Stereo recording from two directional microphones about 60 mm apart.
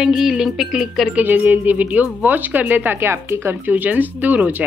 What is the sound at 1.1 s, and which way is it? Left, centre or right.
Speech, right.